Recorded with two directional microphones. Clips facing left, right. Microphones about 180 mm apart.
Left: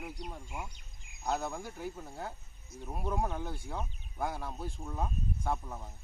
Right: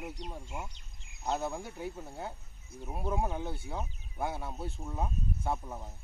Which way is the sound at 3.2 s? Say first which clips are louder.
Even; 15° right (ahead or behind).